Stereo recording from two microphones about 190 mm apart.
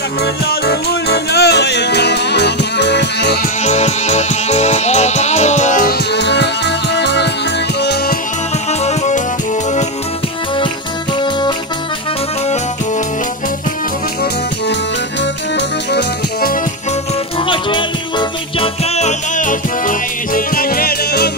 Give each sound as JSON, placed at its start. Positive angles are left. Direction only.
{"t": 0.2, "sound": "music", "side_deg": 55}
{"t": 3.6, "sound": "music", "side_deg": 35}
{"t": 6.1, "sound": "music", "side_deg": 65}
{"t": 8.8, "sound": "music", "side_deg": 35}
{"t": 15.5, "sound": "music", "side_deg": 65}
{"t": 17.5, "sound": "music", "side_deg": 25}
{"t": 18.6, "sound": "music", "side_deg": 35}